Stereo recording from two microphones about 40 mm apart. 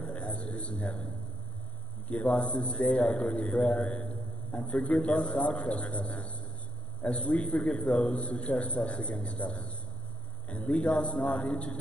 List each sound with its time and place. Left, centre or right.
0.0 s a sound: left
2.0 s a man's voice: left
4.0 s a man's voice: left